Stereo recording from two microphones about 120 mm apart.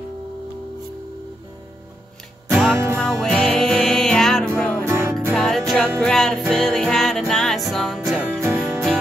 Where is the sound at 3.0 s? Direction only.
5° left (ahead or behind).